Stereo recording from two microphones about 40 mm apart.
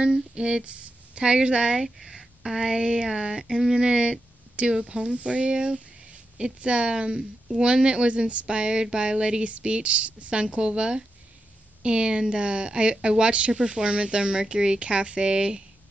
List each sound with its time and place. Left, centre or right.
0.0 s speech: right
1.8 s speech: centre
3.8 s a woman's voice: right